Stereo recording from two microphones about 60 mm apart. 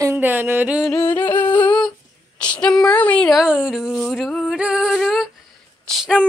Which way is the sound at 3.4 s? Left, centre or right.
Centre.